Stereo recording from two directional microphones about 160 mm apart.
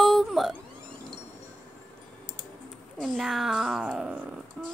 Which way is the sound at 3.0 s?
Centre (ahead or behind).